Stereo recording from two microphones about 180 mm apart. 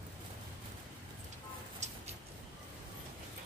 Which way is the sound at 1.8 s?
40° right (ahead or behind).